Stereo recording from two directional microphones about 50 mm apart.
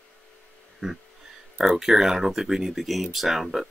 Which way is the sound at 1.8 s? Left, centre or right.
Centre.